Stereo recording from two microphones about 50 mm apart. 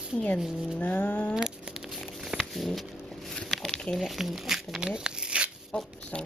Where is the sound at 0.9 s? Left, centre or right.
Left.